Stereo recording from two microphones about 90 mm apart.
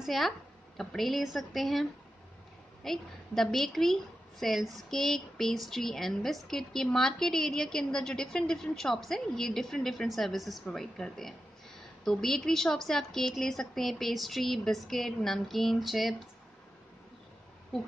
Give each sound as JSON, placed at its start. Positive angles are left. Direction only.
{"t": 0.0, "sound": "a woman's voice", "side_deg": 0}